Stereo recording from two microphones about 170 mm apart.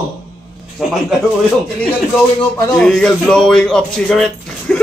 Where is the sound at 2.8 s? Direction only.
5° left (ahead or behind).